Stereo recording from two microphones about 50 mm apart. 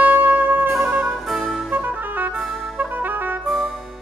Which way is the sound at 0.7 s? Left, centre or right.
Centre.